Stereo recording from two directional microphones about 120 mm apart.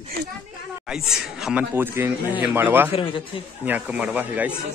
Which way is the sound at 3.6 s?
15° right (ahead or behind).